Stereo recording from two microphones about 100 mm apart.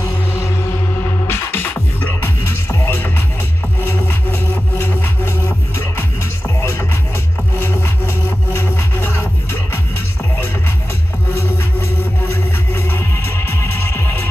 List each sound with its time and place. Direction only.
0.0 s music: 25° left (ahead or behind)
7.5 s music: 25° left (ahead or behind)
11.3 s music: 30° left (ahead or behind)